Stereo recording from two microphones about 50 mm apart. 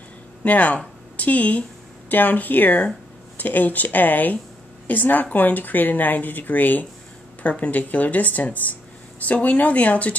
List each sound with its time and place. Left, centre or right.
0.4 s speech: left